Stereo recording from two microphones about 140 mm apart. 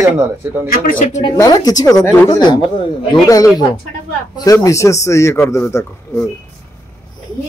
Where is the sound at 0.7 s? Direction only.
85° left.